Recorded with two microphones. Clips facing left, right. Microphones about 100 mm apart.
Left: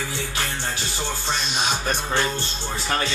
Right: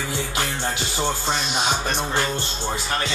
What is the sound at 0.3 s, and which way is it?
Music, 20° right (ahead or behind).